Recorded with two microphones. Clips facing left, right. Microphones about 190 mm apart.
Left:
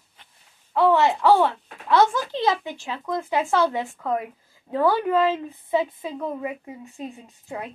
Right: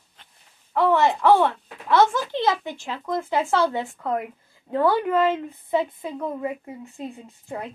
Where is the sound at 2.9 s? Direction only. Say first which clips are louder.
Even; 15° left (ahead or behind).